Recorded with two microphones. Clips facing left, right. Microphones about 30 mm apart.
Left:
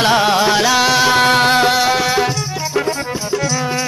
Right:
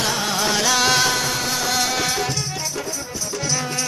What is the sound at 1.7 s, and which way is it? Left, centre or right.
Music, left.